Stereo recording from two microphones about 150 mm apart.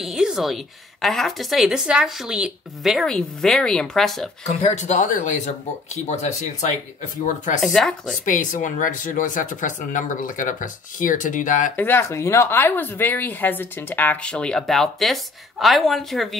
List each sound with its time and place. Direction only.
0.0 s a sound: 5° right (ahead or behind)
1.0 s speech: centre (ahead or behind)
4.5 s speech: 50° left (ahead or behind)
7.6 s speech: centre (ahead or behind)
8.3 s speech: 60° left (ahead or behind)
11.7 s a woman's voice: 15° left (ahead or behind)